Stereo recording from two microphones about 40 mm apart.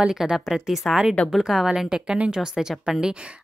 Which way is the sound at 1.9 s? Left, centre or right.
Right.